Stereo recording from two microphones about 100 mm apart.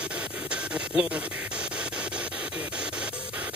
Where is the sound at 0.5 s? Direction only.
10° right (ahead or behind).